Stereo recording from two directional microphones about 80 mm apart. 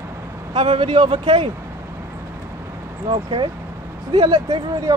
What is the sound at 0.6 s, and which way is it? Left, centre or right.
Speech, right.